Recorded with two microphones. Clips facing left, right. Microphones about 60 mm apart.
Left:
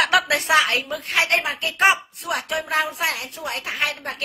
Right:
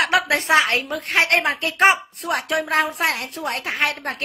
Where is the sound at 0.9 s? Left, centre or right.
Right.